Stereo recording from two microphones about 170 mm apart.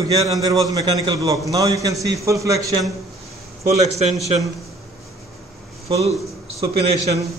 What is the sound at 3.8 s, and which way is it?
Speech, 40° right (ahead or behind).